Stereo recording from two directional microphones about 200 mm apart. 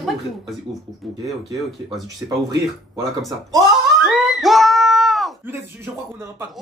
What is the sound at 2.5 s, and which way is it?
Speech, 15° right (ahead or behind).